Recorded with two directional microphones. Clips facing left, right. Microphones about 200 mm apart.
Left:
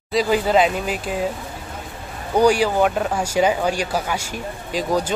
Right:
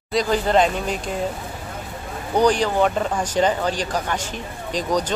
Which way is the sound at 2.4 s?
10° left (ahead or behind).